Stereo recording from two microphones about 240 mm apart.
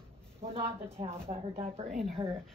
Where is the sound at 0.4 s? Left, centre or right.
Right.